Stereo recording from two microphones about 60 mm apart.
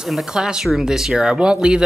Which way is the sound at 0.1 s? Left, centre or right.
Centre.